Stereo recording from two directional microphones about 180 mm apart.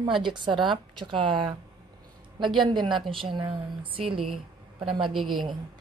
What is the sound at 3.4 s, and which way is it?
Speech, 25° right (ahead or behind).